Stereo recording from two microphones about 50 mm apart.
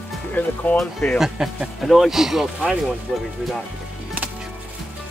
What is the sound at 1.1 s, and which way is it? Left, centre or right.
Speech, centre.